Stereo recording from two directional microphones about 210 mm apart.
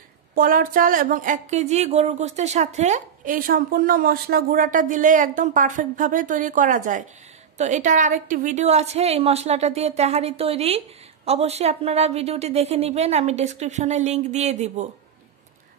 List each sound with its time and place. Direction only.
0.3 s speech: 40° right (ahead or behind)